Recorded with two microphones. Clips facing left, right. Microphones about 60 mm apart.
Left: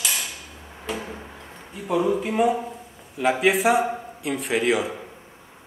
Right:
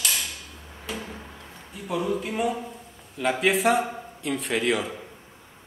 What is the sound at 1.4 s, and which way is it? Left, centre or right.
A man's voice, centre.